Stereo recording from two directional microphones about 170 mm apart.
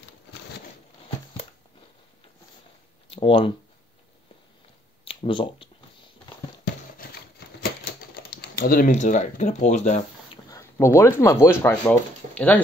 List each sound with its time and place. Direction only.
3.1 s speech: 35° left (ahead or behind)
5.0 s a sound: 30° left (ahead or behind)
8.4 s speech: 60° left (ahead or behind); by 10.4 s 40° left (ahead or behind)
10.5 s speech: 15° left (ahead or behind)